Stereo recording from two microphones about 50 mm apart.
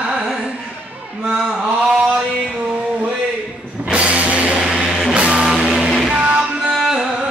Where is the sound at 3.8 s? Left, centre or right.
Right.